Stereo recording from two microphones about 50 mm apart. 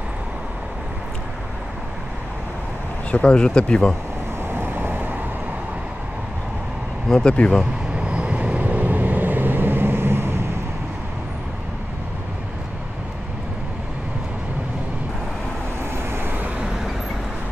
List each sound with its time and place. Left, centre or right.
3.1 s speech: left
4.5 s vehicle: right
7.1 s speech: centre
7.9 s vehicle: right
16.1 s vehicle: right